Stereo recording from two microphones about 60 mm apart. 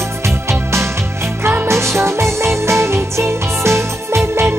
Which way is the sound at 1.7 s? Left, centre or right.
Right.